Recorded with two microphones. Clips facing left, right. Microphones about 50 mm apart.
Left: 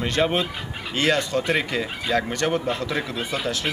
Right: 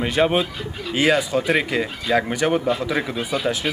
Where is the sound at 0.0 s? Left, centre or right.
Centre.